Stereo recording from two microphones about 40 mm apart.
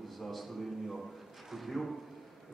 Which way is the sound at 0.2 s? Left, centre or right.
Centre.